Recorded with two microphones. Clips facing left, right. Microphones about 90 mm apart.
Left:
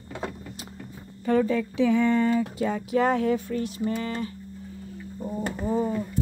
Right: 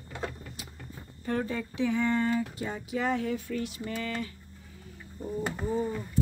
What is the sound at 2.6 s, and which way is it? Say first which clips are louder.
Speech: left 8 dB; 75° left (ahead or behind).